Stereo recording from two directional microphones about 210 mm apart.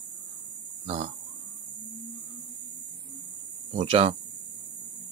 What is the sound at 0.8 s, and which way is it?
Speech, 30° right (ahead or behind).